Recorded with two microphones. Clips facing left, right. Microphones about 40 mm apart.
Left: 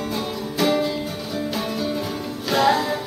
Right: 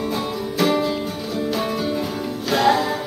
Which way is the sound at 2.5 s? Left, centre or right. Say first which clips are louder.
Right 1 dB; centre.